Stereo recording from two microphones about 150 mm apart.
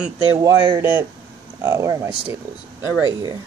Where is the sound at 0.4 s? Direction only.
25° right (ahead or behind).